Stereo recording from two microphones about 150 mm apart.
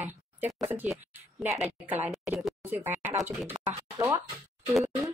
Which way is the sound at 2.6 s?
15° right (ahead or behind).